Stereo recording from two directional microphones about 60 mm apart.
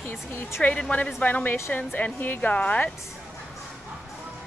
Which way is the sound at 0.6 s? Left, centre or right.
Left.